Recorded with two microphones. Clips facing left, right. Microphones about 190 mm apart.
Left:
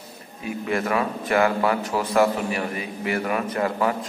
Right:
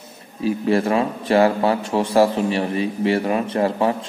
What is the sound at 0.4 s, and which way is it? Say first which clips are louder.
A man's voice: right 7 dB; 30° right (ahead or behind).